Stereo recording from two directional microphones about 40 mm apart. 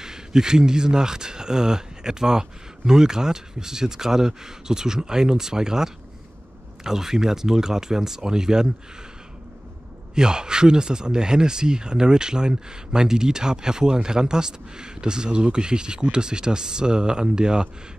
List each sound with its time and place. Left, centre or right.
0.0 s speech: centre
10.1 s speech: centre